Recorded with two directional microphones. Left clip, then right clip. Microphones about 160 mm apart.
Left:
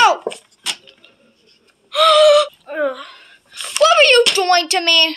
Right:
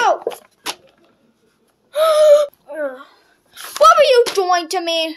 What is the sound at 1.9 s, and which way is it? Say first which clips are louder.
Gasp: left 1 dB; 20° right (ahead or behind).